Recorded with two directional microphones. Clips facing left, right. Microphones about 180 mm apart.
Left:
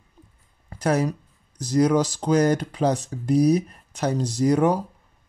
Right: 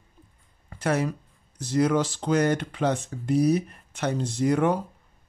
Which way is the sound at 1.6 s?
40° left (ahead or behind).